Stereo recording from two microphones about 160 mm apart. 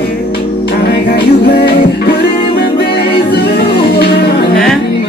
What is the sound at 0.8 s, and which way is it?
Music, 70° left (ahead or behind).